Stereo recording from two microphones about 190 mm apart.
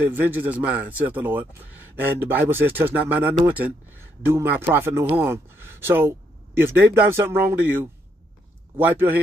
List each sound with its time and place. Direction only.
0.1 s speech: 10° right (ahead or behind)